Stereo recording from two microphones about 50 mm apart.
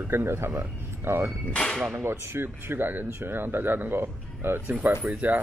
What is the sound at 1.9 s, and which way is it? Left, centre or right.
Speech, right.